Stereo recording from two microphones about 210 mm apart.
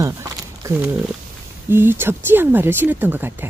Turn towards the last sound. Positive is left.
turn(degrees=-10)  # may be behind; listen again after turning